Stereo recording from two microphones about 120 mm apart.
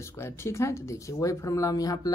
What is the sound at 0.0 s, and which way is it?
Speech, 20° left (ahead or behind).